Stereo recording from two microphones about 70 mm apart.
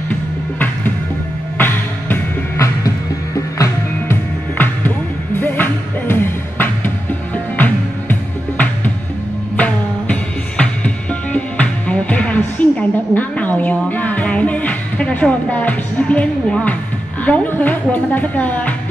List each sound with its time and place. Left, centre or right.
0.1 s music: left
3.3 s music: left
4.1 s music: left
10.6 s music: centre
12.4 s a sound: left
17.2 s a woman's voice: left